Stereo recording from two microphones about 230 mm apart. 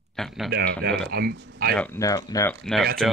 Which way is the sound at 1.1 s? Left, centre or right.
Right.